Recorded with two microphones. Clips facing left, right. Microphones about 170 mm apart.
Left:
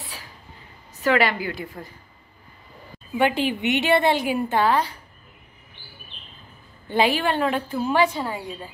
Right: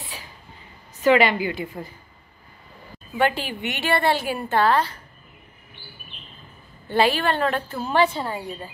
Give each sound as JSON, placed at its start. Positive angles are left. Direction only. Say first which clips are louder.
{"t": 1.0, "sound": "a woman's voice", "louder": "right 3 dB", "side_deg": -20}
{"t": 1.4, "sound": "a woman's voice", "louder": "right 3 dB", "side_deg": -5}
{"t": 3.2, "sound": "a woman's voice", "louder": "left 2 dB", "side_deg": 15}
{"t": 6.9, "sound": "a woman's voice", "louder": "right 1 dB", "side_deg": 15}